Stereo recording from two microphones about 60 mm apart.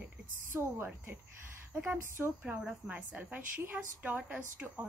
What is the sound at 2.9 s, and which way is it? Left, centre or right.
A woman's voice, right.